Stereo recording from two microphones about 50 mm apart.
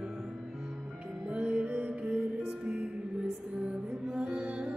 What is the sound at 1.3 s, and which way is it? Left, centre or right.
Music, right.